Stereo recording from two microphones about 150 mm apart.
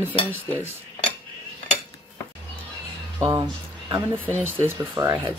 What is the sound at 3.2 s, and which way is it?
Speech, 20° right (ahead or behind).